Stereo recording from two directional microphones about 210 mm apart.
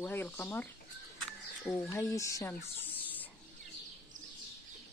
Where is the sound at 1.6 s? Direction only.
15° left (ahead or behind).